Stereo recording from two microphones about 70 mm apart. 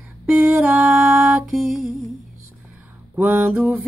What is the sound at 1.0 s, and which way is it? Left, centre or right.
Music, right.